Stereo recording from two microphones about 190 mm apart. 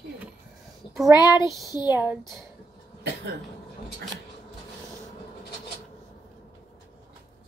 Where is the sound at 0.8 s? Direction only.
30° left (ahead or behind).